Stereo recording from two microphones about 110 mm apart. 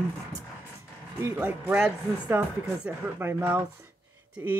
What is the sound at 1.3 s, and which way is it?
Speech, 15° right (ahead or behind).